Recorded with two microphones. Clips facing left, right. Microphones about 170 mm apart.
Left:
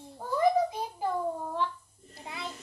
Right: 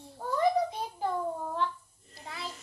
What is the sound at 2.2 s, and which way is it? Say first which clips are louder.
Speech: left 1 dB; 20° left (ahead or behind).